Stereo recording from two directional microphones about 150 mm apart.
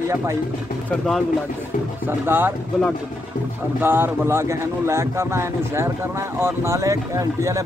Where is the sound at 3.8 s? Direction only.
15° right (ahead or behind).